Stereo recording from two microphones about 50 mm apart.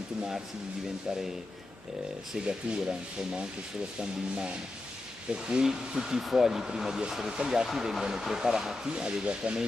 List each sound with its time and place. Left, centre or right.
2.4 s speech: centre